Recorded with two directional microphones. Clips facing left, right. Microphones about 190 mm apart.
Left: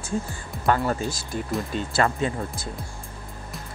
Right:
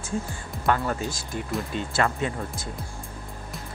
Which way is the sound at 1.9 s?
35° left (ahead or behind).